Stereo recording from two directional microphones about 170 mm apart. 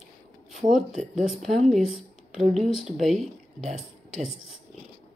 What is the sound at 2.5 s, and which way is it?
Speech, centre (ahead or behind).